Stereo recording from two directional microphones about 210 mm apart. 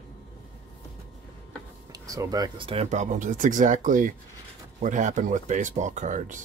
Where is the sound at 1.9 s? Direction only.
15° right (ahead or behind).